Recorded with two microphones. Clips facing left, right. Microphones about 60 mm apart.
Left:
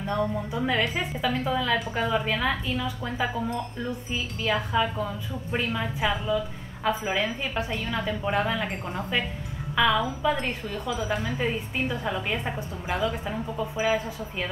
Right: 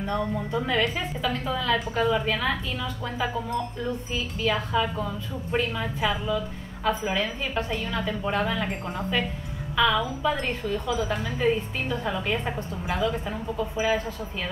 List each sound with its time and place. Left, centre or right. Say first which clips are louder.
0.7 s a woman's voice: left 1 dB; centre